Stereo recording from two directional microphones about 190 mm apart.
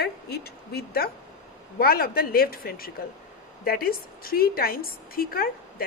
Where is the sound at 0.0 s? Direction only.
55° left (ahead or behind).